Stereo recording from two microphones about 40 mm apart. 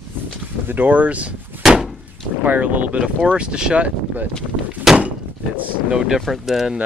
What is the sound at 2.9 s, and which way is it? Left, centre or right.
Speech, right.